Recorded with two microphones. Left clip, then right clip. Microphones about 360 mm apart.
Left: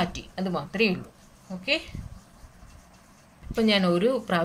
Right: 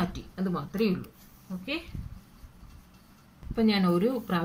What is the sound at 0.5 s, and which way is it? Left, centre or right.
Speech, left.